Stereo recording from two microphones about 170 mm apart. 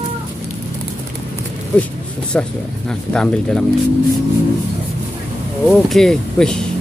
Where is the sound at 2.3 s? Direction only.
5° left (ahead or behind).